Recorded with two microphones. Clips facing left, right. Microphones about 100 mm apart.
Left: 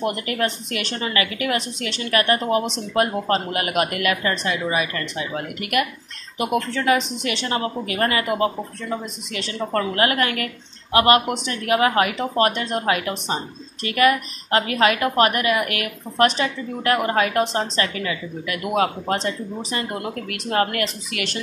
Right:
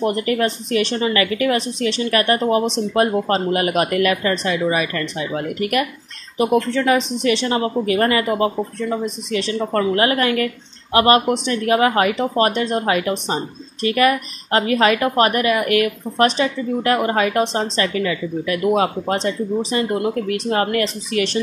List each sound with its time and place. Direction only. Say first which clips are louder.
0.0 s a woman's voice: right 5 dB; 35° right (ahead or behind)